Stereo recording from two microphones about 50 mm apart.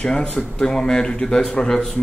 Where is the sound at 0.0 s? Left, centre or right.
Left.